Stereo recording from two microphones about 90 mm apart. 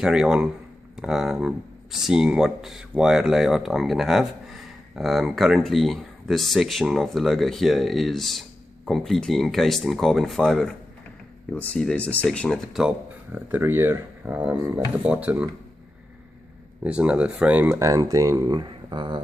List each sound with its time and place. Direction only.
0.0 s speech: 10° right (ahead or behind)
11.8 s speech: 15° left (ahead or behind)
12.7 s speech: 10° right (ahead or behind)
13.6 s speech: 25° right (ahead or behind)
16.8 s speech: 15° right (ahead or behind)
17.7 s speech: 35° right (ahead or behind)
18.5 s speech: 60° right (ahead or behind)